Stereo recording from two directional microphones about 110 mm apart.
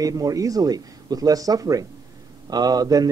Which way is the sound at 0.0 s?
30° right (ahead or behind).